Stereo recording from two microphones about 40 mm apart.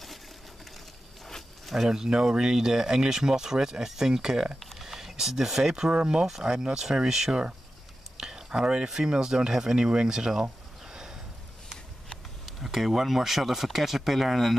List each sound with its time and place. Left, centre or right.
1.9 s speech: centre
10.9 s a sound: centre
12.4 s speech: centre